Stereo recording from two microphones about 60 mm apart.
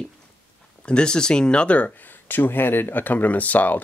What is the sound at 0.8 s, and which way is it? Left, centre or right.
Speech, centre.